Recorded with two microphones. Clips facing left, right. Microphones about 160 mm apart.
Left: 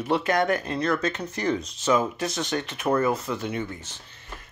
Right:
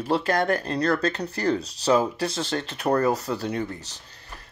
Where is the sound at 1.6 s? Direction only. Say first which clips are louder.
Right 2 dB; 35° right (ahead or behind).